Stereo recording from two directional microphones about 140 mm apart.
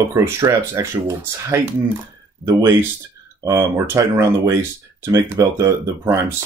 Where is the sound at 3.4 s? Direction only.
25° right (ahead or behind).